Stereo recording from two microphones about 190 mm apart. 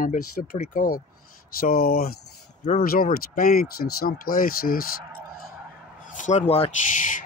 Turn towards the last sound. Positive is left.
turn(degrees=35)  # may be behind; listen again after turning